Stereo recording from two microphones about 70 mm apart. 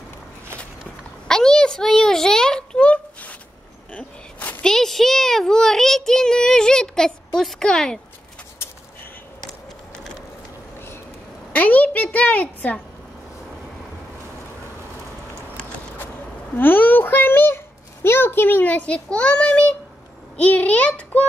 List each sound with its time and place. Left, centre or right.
1.2 s a sound: centre
4.6 s a child's voice: centre
11.5 s a child's voice: left
16.5 s a child's voice: left